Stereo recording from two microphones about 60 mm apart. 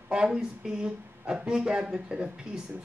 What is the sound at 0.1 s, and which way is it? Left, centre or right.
Speech, centre.